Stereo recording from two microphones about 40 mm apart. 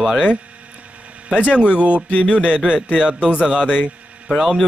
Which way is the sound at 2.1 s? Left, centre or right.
Left.